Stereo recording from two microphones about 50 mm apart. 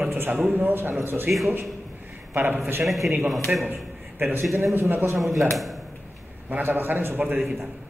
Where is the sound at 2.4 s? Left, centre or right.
Right.